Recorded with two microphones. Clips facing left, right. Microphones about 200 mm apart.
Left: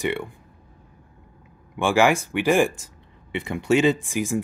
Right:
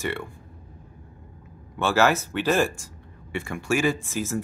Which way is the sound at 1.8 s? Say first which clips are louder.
Left 2 dB; 15° left (ahead or behind).